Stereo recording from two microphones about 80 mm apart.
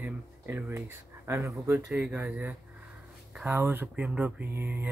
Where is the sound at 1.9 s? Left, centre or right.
Centre.